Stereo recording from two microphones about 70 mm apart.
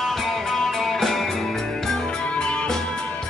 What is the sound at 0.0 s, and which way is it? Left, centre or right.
Music, centre.